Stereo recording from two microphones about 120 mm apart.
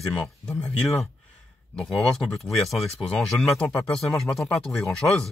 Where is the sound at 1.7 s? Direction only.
5° left (ahead or behind).